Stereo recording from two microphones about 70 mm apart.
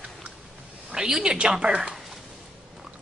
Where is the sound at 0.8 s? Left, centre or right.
Centre.